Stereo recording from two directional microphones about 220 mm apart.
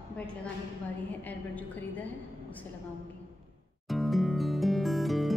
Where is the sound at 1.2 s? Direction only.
10° left (ahead or behind).